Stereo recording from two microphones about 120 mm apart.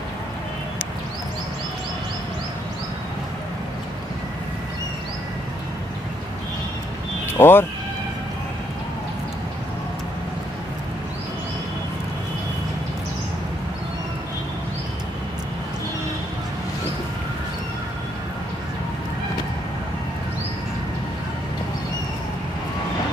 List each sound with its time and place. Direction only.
7.2 s speech: 20° left (ahead or behind)